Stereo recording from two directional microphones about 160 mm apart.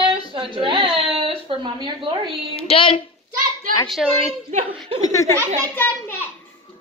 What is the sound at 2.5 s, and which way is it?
Child singing, 35° left (ahead or behind).